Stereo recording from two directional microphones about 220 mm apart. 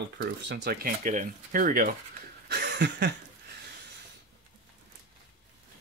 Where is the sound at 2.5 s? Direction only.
50° right (ahead or behind).